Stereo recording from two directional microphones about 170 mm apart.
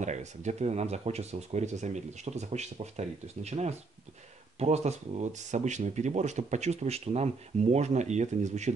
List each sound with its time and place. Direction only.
0.0 s speech: 45° right (ahead or behind)